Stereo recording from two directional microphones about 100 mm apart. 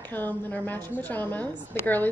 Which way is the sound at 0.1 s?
20° left (ahead or behind).